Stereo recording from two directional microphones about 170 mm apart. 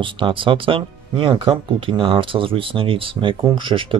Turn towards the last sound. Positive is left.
turn(degrees=-30)  # may be behind; listen again after turning